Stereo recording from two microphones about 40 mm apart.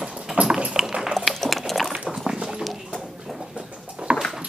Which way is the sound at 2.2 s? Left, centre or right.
Centre.